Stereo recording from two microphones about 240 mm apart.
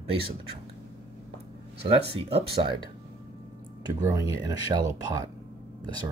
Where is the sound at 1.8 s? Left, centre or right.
Right.